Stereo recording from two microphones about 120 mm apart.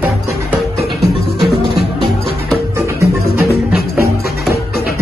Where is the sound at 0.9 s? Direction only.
Centre (ahead or behind).